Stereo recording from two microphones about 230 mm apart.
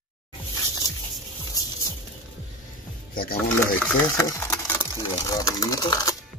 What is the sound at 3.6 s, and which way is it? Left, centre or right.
Speech, centre.